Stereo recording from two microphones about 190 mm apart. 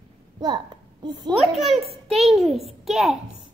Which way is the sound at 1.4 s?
Centre (ahead or behind).